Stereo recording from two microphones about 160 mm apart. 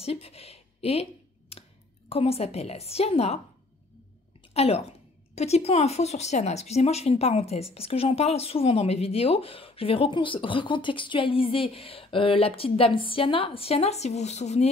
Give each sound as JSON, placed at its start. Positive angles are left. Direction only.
{"t": 0.0, "sound": "speech", "side_deg": 40}
{"t": 2.0, "sound": "speech", "side_deg": 35}
{"t": 4.6, "sound": "speech", "side_deg": 40}